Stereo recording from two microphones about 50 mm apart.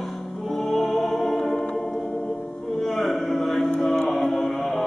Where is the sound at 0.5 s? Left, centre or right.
Centre.